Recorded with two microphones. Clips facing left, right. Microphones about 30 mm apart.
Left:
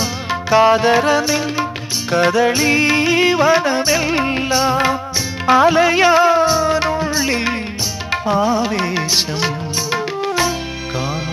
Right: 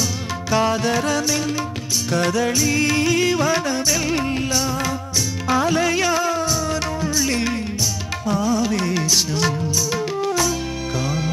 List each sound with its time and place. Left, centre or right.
0.0 s music: left